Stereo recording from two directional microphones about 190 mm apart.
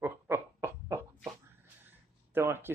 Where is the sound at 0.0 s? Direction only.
10° right (ahead or behind).